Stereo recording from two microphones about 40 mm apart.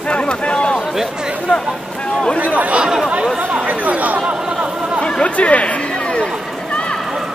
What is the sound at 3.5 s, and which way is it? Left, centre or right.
Chatter, right.